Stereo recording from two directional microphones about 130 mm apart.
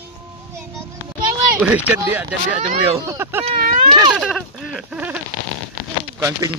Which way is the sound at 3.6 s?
90° right.